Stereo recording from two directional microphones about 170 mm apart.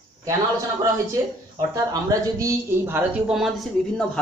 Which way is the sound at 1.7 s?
20° right (ahead or behind).